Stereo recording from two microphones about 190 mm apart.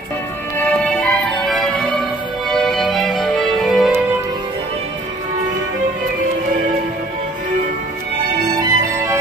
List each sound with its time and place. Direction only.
0.6 s music: 5° left (ahead or behind)
8.5 s music: 15° right (ahead or behind)